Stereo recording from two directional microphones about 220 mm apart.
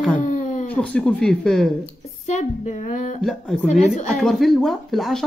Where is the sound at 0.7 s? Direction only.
5° left (ahead or behind).